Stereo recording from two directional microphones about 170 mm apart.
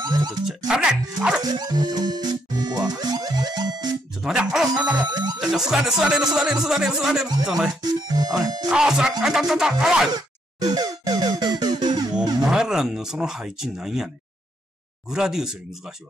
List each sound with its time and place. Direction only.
0.0 s music: 25° right (ahead or behind)
0.7 s speech: 5° right (ahead or behind)
1.4 s music: 25° right (ahead or behind)
4.2 s speech: 5° right (ahead or behind)
7.8 s music: 25° right (ahead or behind)
8.6 s speech: 5° right (ahead or behind)
10.1 s music: 25° right (ahead or behind)
12.4 s speech: 5° right (ahead or behind)